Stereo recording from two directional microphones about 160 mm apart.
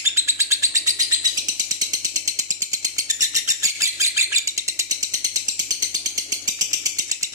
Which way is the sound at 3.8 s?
20° right (ahead or behind).